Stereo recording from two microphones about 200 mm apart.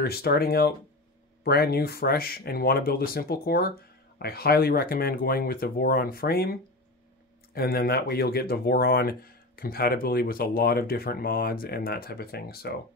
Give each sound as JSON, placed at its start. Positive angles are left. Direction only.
{"t": 0.0, "sound": "speech", "side_deg": 50}
{"t": 7.5, "sound": "speech", "side_deg": 50}